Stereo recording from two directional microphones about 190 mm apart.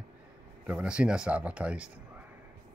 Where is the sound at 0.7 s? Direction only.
5° right (ahead or behind).